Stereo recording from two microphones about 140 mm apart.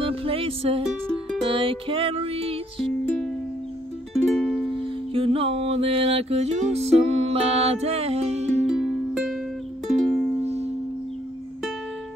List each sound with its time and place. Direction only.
0.0 s music: 45° right (ahead or behind)
4.1 s music: centre (ahead or behind)
4.6 s music: 40° right (ahead or behind)
8.6 s music: 5° right (ahead or behind)